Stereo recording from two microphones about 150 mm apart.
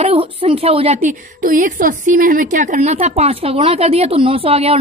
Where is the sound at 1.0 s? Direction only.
60° right (ahead or behind).